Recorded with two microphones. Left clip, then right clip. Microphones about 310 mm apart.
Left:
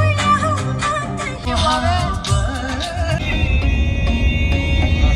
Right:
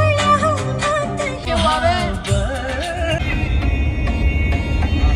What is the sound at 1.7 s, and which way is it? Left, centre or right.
Music, centre.